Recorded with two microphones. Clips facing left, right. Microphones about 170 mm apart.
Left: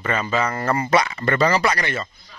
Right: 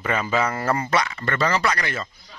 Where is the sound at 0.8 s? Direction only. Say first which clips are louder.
Left 4 dB; 15° left (ahead or behind).